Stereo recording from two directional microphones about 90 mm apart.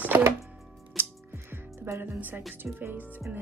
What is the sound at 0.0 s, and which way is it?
Music, 20° right (ahead or behind).